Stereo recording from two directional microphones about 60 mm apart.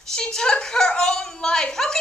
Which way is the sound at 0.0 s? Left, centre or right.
Centre.